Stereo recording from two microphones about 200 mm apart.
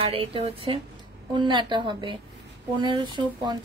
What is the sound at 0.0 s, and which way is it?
Speech, 30° right (ahead or behind).